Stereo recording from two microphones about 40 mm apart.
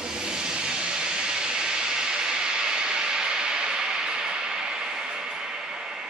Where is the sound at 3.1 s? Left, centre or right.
Centre.